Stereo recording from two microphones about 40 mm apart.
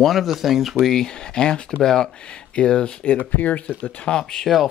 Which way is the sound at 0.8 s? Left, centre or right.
Centre.